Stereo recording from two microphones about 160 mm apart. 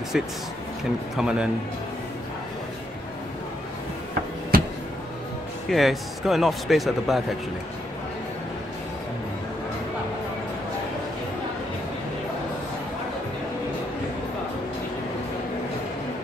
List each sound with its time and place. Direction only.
0.1 s speech: 5° right (ahead or behind)
4.5 s a sound: 70° right (ahead or behind)
5.7 s speech: centre (ahead or behind)